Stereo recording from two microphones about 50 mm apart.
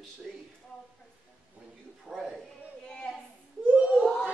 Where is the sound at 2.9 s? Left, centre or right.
Centre.